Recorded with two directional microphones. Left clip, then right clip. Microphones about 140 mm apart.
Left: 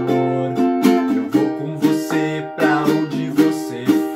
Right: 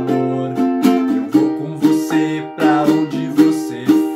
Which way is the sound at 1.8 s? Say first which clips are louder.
Right 3 dB; centre (ahead or behind).